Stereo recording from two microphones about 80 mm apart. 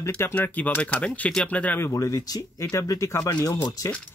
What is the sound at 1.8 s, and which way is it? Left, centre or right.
Speech, left.